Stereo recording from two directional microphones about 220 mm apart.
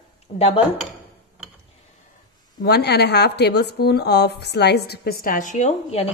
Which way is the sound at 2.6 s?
45° left (ahead or behind).